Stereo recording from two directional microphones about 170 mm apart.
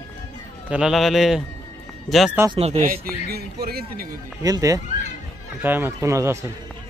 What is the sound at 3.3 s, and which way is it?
Speech, 65° right (ahead or behind).